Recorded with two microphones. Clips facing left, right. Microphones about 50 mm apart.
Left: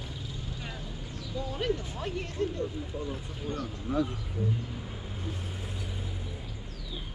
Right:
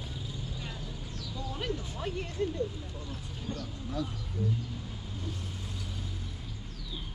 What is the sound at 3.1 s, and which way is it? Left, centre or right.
Speech, centre.